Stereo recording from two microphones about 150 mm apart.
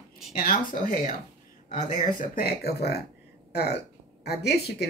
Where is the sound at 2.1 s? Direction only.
80° left.